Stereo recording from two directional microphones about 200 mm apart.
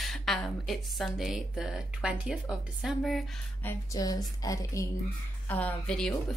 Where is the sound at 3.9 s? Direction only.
20° left (ahead or behind).